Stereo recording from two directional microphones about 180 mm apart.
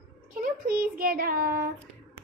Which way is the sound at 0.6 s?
55° right (ahead or behind).